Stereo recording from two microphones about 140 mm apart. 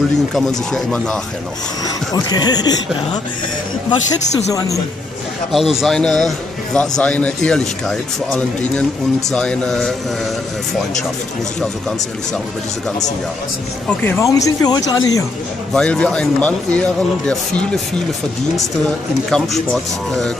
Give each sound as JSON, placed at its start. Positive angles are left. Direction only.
{"t": 0.3, "sound": "a man's voice", "side_deg": 0}
{"t": 2.1, "sound": "speech", "side_deg": 30}
{"t": 4.5, "sound": "speech", "side_deg": 25}
{"t": 5.5, "sound": "a man's voice", "side_deg": 0}
{"t": 13.8, "sound": "speech", "side_deg": 15}
{"t": 15.7, "sound": "a man's voice", "side_deg": 5}
{"t": 19.3, "sound": "a man's voice", "side_deg": 5}